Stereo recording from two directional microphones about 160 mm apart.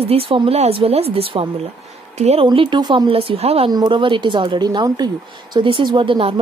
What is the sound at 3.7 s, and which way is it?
A woman's voice, 30° right (ahead or behind).